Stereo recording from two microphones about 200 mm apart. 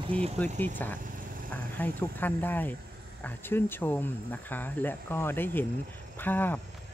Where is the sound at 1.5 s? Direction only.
10° left (ahead or behind).